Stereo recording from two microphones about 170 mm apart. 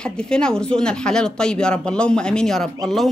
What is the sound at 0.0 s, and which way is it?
Speech, 5° left (ahead or behind).